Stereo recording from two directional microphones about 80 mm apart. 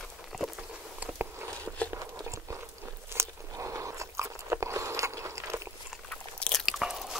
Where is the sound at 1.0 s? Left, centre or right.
Right.